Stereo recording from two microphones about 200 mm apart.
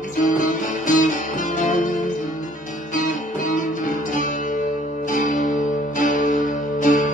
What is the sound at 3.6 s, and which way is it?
Music, 40° left (ahead or behind).